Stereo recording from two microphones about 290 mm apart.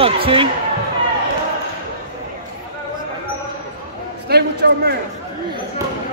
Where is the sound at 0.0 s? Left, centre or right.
Centre.